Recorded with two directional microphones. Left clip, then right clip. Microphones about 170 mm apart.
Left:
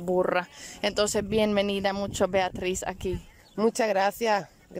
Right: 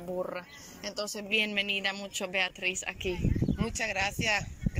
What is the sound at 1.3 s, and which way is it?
Speech, 40° left (ahead or behind).